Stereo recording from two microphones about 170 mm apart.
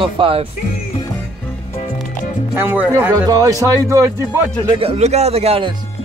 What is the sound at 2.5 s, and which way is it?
Speech, 10° right (ahead or behind).